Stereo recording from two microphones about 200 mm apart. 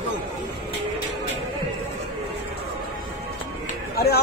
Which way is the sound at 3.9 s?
55° left (ahead or behind).